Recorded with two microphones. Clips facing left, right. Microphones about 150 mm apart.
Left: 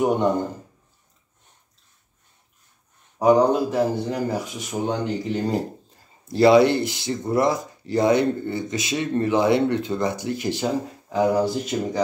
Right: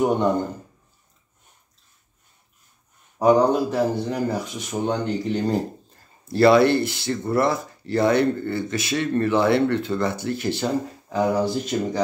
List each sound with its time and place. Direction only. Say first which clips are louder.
0.0 s speech: even; 5° left (ahead or behind)
3.2 s speech: even; centre (ahead or behind)
6.2 s speech: left 1 dB; 15° left (ahead or behind); by 12.0 s centre (ahead or behind)